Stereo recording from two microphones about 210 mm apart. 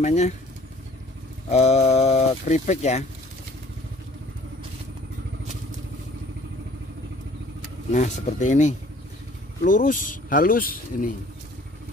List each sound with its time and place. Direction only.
0.0 s speech: 30° left (ahead or behind)
1.5 s speech: 30° left (ahead or behind)
7.9 s speech: 35° left (ahead or behind)